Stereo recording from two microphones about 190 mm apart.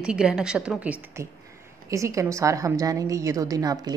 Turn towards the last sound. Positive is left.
turn(degrees=-20)  # may be behind; listen again after turning